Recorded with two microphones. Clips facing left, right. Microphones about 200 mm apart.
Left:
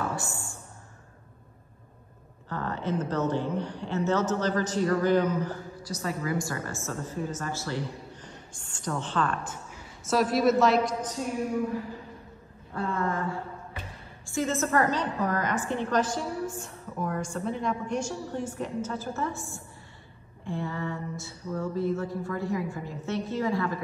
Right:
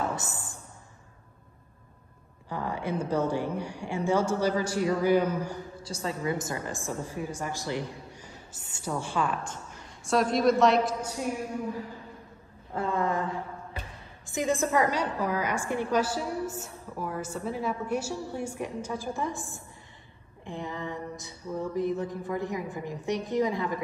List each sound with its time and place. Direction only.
0.0 s a sound: 20° right (ahead or behind)
2.5 s a woman's voice: 10° right (ahead or behind)
5.8 s a woman's voice: 25° right (ahead or behind); by 9.4 s 10° right (ahead or behind)
10.0 s a woman's voice: 5° left (ahead or behind)
12.7 s a sound: 20° right (ahead or behind)
14.2 s a woman's voice: 15° right (ahead or behind)
20.4 s a woman's voice: 15° right (ahead or behind)